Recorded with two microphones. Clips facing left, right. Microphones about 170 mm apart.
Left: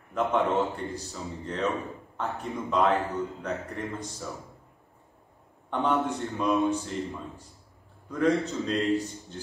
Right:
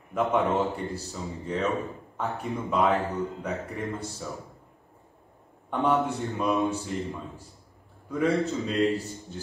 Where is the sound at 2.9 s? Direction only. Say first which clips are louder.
Right 1 dB; 15° right (ahead or behind).